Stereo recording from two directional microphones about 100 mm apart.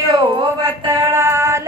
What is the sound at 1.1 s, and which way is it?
Music, 25° right (ahead or behind).